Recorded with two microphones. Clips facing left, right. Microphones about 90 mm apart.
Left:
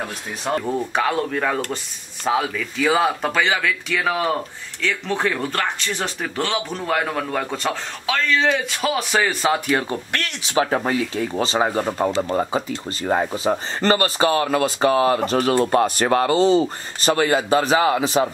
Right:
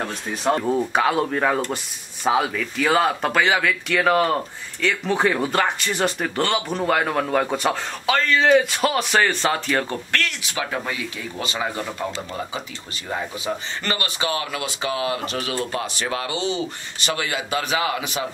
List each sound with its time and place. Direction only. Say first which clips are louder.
0.5 s a man's voice: right 2 dB; centre (ahead or behind); by 10.5 s 20° left (ahead or behind)
10.5 s speech: left 12 dB; 40° left (ahead or behind)